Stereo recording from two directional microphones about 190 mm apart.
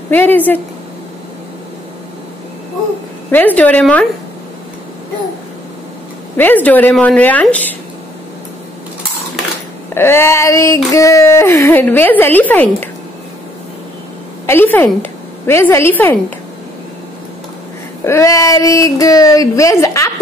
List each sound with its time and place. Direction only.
0.1 s a woman's voice: 10° left (ahead or behind)
3.3 s a woman's voice: 10° left (ahead or behind)
6.3 s a woman's voice: 10° left (ahead or behind)
9.9 s a woman's voice: 10° left (ahead or behind)
14.4 s a woman's voice: 10° left (ahead or behind)
18.0 s a woman's voice: 15° left (ahead or behind)